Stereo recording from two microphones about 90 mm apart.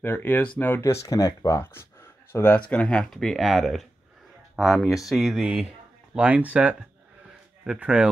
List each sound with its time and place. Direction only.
0.0 s speech: 20° left (ahead or behind)
0.8 s speech: 40° left (ahead or behind)
1.6 s speech: 25° left (ahead or behind)
2.7 s speech: 10° left (ahead or behind); by 8.1 s 10° right (ahead or behind)